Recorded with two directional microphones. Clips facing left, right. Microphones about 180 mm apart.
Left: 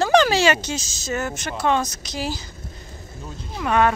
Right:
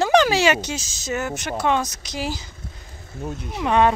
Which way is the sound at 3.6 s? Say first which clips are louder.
Right 1 dB; 25° right (ahead or behind).